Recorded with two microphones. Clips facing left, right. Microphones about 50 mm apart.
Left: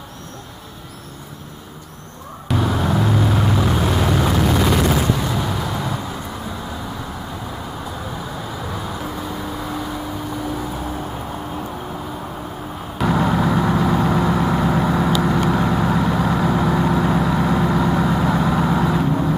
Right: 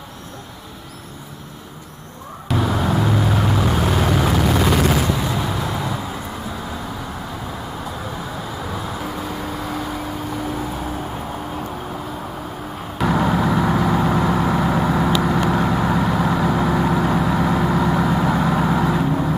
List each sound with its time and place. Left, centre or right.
2.4 s vehicle: centre
5.0 s artillery fire: centre
8.7 s vehicle: centre
9.4 s vehicle: right
12.9 s vehicle: centre